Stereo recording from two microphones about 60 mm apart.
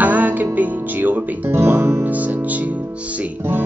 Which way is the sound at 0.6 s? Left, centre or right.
Right.